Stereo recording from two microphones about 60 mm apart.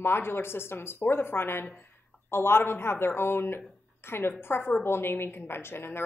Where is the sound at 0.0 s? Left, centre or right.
Left.